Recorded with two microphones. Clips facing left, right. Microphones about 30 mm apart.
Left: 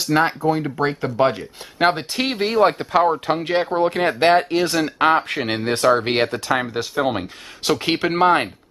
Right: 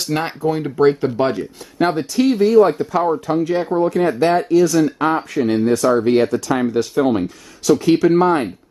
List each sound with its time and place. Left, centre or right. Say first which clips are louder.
0.0 s speech: left 2 dB; centre
1.3 s speech: right 6 dB; left
6.5 s speech: right 4 dB; left
7.8 s speech: right 3 dB; left